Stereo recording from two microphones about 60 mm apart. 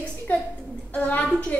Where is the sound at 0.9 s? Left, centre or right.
Left.